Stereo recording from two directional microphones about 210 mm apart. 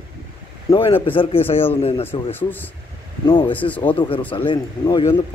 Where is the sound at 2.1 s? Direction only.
10° left (ahead or behind).